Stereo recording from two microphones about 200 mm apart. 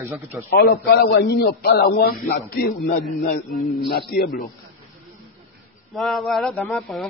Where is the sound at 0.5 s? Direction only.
50° left (ahead or behind).